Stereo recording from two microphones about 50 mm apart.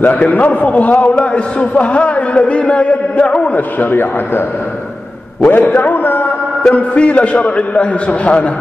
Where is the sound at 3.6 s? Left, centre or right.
Left.